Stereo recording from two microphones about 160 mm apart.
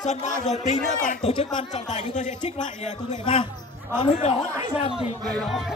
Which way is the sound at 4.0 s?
35° left (ahead or behind).